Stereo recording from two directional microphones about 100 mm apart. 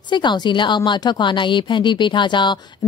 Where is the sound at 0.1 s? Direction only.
50° left (ahead or behind).